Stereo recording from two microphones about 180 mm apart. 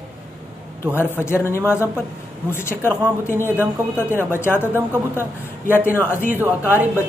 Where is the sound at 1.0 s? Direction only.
10° left (ahead or behind).